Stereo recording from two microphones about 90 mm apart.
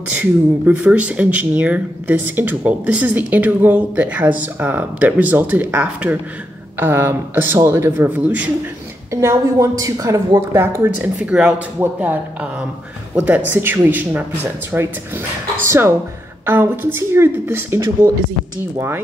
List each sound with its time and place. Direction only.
0.2 s speech: 15° right (ahead or behind)
9.1 s a woman's voice: 30° right (ahead or behind)
11.0 s a woman's voice: 15° right (ahead or behind)